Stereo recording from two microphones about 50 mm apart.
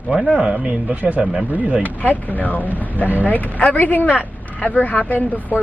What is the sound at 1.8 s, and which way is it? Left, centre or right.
Speech, left.